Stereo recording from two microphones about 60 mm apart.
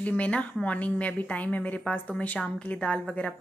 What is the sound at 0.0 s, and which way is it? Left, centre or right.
A woman's voice, left.